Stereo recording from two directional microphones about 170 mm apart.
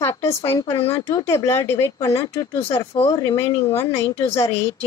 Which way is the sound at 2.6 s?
35° left (ahead or behind).